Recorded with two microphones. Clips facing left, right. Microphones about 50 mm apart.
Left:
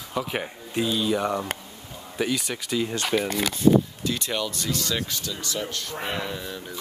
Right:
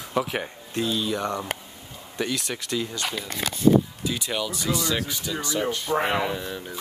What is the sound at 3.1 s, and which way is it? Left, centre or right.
Speech, left.